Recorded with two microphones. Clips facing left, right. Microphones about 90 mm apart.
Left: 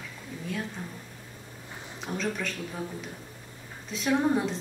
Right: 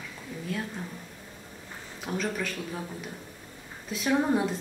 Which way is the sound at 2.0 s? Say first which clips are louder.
Right 1 dB; 5° right (ahead or behind).